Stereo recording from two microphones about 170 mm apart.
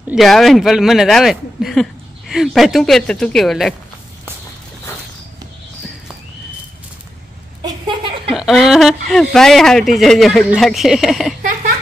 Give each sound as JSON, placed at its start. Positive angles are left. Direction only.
{"t": 0.1, "sound": "speech", "side_deg": 0}
{"t": 7.6, "sound": "a sound", "side_deg": -25}
{"t": 8.4, "sound": "speech", "side_deg": 0}